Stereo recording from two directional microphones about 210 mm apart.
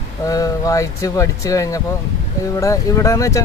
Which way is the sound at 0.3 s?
15° left (ahead or behind).